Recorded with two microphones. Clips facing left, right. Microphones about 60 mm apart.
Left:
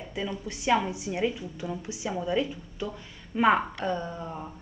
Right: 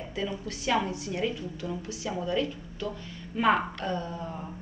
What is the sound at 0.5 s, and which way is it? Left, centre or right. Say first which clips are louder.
A woman's voice: left 3 dB; centre.